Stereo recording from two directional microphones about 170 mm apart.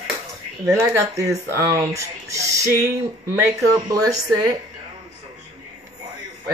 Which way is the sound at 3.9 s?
20° right (ahead or behind).